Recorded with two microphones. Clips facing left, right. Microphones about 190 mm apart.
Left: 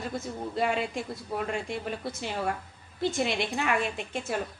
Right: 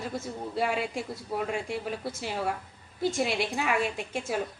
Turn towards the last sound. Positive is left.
turn(degrees=-10)  # may be behind; listen again after turning